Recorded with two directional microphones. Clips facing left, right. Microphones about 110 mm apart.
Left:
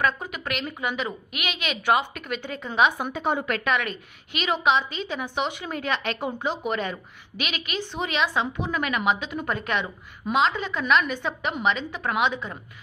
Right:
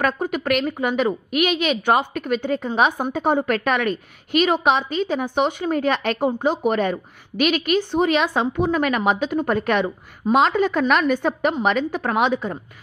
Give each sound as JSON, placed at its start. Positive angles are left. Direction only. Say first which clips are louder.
{"t": 0.3, "sound": "a woman's voice", "louder": "right 10 dB", "side_deg": -45}